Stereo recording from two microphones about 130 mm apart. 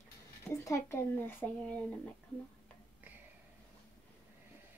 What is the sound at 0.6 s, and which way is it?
Speech, 20° left (ahead or behind).